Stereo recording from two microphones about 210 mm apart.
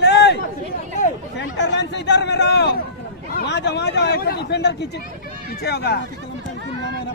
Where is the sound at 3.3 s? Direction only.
55° left (ahead or behind).